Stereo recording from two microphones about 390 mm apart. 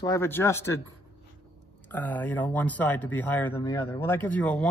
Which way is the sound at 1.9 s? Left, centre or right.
Centre.